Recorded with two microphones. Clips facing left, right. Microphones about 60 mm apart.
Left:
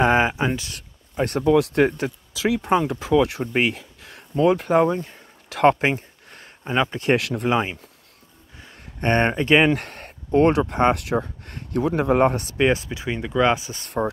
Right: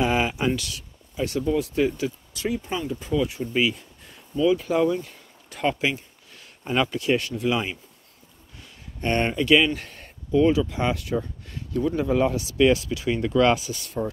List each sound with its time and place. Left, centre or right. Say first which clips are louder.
0.0 s a sound: left 5 dB; left
0.3 s speech: left 1 dB; left
0.7 s a sound: left 4 dB; left
1.4 s speech: left 6 dB; left
2.4 s speech: left 7 dB; left
3.7 s speech: left 5 dB; left
5.7 s a sound: left 5 dB; left
6.6 s speech: left 1 dB; left
7.3 s speech: left 3 dB; left
8.7 s speech: left 4 dB; left
9.8 s speech: left 5 dB; left
12.5 s speech: right 1 dB; left
13.7 s speech: right 3 dB; left